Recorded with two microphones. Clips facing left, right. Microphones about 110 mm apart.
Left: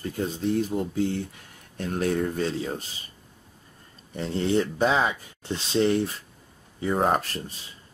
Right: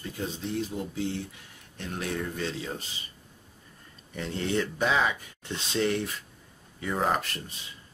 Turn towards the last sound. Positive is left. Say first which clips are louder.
# left 4 dB
turn(degrees=35)  # may be behind; listen again after turning